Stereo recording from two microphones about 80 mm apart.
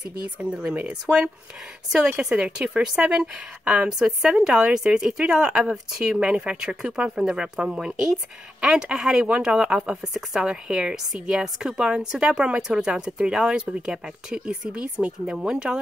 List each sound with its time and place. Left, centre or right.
0.4 s speech: centre